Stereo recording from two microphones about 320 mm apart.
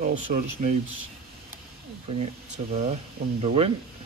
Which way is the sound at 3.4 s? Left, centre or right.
Centre.